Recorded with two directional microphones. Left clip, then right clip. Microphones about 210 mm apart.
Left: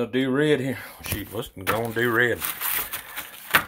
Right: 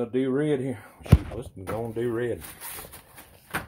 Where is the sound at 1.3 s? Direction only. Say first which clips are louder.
Left 7 dB; 30° left (ahead or behind).